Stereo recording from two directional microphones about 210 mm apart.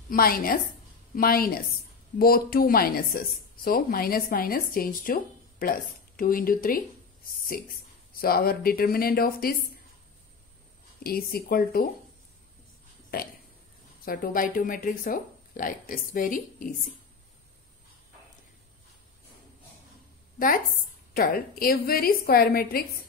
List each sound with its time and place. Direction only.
0.1 s a woman's voice: 45° left (ahead or behind)
8.1 s a woman's voice: 45° left (ahead or behind)
11.1 s a woman's voice: 45° left (ahead or behind)
13.1 s a woman's voice: 45° left (ahead or behind)
20.3 s a woman's voice: 40° left (ahead or behind)